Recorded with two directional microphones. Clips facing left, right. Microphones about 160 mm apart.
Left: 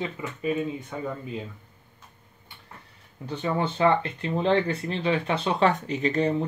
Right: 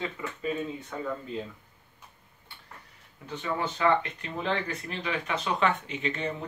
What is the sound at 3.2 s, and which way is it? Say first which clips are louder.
Speech: left 5 dB; 30° left (ahead or behind).